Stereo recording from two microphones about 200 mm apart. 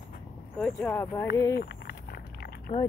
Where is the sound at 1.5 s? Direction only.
55° left (ahead or behind).